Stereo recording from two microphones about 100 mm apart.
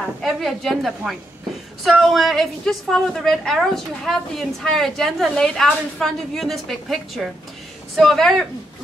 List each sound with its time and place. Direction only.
0.0 s a woman's voice: 5° left (ahead or behind)